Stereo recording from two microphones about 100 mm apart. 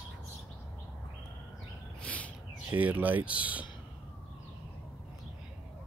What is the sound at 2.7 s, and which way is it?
Speech, 15° right (ahead or behind).